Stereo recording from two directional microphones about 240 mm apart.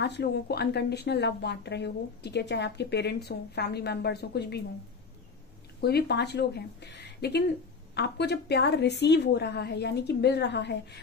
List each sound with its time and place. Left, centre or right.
0.0 s speech: left
5.8 s speech: left